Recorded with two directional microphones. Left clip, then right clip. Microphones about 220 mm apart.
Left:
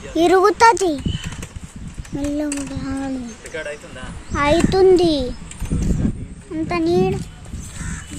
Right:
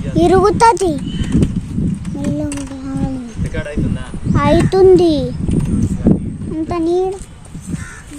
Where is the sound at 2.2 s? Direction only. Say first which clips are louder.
Right 1 dB; 10° left (ahead or behind).